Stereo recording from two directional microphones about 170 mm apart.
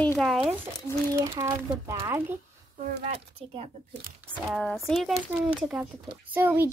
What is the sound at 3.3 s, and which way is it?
Speech, 35° right (ahead or behind).